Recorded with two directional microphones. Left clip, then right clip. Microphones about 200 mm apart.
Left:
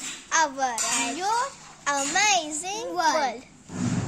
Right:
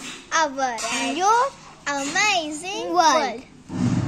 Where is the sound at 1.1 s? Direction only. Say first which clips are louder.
Right 12 dB; 30° right (ahead or behind).